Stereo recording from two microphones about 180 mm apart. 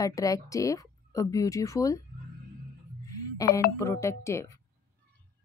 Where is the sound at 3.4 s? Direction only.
20° left (ahead or behind).